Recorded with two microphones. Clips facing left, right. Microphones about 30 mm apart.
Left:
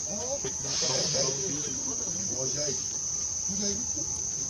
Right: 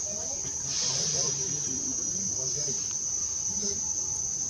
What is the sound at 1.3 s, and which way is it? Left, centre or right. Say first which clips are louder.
Speech: left 1 dB; centre.